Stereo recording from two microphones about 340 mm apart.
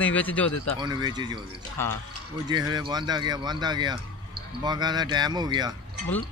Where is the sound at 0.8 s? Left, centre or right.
Centre.